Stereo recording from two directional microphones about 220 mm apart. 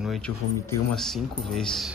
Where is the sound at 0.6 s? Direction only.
5° left (ahead or behind).